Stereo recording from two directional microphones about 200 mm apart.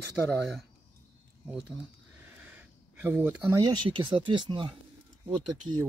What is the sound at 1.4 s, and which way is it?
Speech, 5° right (ahead or behind).